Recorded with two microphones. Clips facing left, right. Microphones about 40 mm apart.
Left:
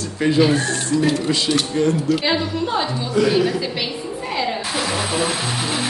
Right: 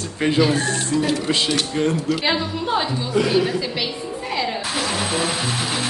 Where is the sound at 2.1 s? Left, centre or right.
Centre.